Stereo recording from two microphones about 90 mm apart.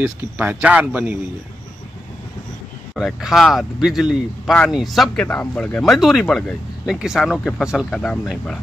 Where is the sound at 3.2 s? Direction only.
Centre (ahead or behind).